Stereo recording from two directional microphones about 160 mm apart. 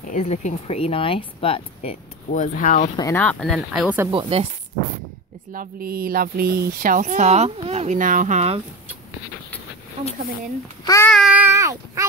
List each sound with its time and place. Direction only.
0.1 s speech: 45° left (ahead or behind)
3.2 s speech: 5° left (ahead or behind)
4.1 s speech: 35° right (ahead or behind)
5.5 s speech: 65° right (ahead or behind); by 8.5 s 45° right (ahead or behind)
10.8 s child singing: 20° left (ahead or behind)
11.1 s child singing: centre (ahead or behind)
11.3 s a sound: 15° right (ahead or behind)